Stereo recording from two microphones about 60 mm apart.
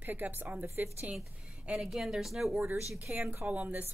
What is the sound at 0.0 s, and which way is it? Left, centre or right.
Speech, right.